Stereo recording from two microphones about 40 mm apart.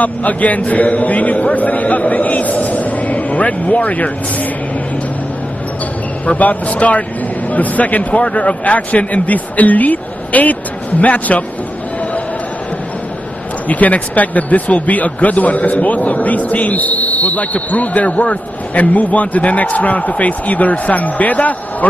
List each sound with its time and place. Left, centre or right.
0.0 s speech: left
6.2 s speech: left
13.7 s speech: left